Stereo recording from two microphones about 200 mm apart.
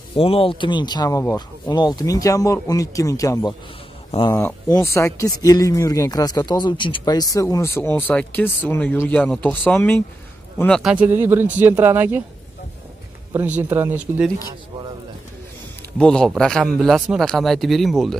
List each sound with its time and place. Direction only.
0.1 s a man's voice: 25° left (ahead or behind)
4.4 s a man's voice: 15° left (ahead or behind); by 12.2 s 10° right (ahead or behind)
13.6 s speech: 10° right (ahead or behind)
16.0 s a man's voice: 5° left (ahead or behind)